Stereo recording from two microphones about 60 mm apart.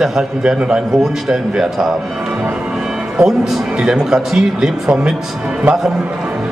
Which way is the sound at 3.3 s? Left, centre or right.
Centre.